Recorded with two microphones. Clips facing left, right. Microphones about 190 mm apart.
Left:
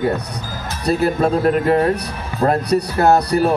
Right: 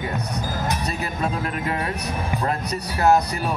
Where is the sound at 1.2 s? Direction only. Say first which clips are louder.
Left 10 dB; 40° left (ahead or behind).